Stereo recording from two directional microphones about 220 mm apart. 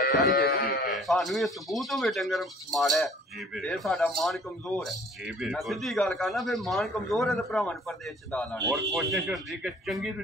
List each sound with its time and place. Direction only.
0.6 s sheep: 40° left (ahead or behind)
0.8 s speech: centre (ahead or behind)